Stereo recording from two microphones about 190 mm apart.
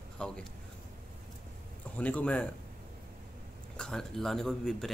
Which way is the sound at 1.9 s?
5° left (ahead or behind).